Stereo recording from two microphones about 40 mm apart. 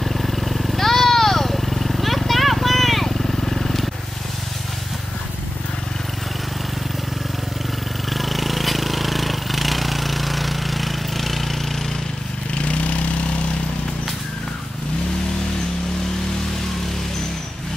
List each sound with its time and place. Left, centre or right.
0.0 s vehicle: centre
8.1 s a sound: centre
12.6 s vehicle: left